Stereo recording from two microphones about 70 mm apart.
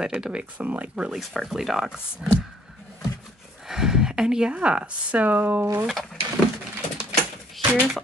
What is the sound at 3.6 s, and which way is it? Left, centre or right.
Speech, centre.